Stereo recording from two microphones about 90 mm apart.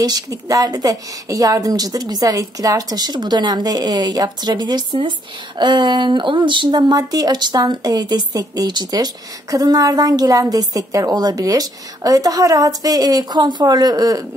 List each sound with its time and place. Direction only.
0.0 s a woman's voice: 45° right (ahead or behind); by 6.8 s 60° right (ahead or behind)
6.8 s a woman's voice: 45° right (ahead or behind)